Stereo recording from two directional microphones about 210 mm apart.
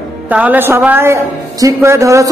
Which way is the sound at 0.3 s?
5° right (ahead or behind).